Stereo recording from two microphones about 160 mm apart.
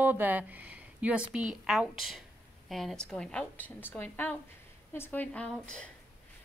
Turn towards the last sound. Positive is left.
turn(degrees=5)  # may be behind; listen again after turning